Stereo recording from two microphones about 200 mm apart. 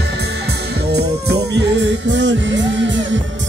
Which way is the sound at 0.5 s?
55° right (ahead or behind).